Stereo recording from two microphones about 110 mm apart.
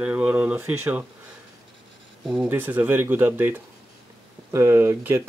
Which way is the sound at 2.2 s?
10° right (ahead or behind).